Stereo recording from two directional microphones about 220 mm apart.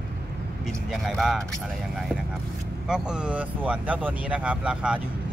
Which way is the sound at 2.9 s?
5° right (ahead or behind).